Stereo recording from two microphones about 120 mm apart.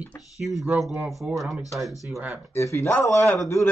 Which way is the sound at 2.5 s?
25° left (ahead or behind).